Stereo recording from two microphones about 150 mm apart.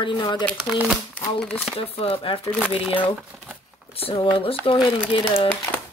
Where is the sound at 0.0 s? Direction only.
30° left (ahead or behind).